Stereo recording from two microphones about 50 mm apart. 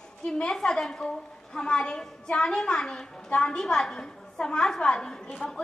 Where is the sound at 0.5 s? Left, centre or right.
Centre.